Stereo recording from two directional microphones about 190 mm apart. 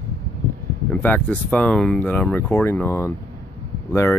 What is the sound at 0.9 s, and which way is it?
Speech, 10° left (ahead or behind).